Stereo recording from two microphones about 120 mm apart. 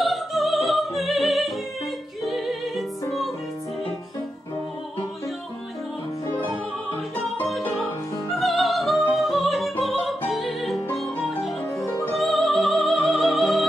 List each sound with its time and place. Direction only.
0.0 s opera: centre (ahead or behind)
2.3 s music: centre (ahead or behind)
8.4 s music: centre (ahead or behind)
11.8 s music: 20° left (ahead or behind)
12.1 s music: centre (ahead or behind)